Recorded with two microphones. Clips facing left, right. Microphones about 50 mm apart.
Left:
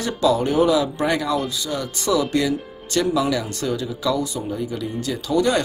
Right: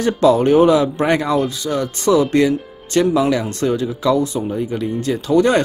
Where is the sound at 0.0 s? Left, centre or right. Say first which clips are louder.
Right 6 dB; right.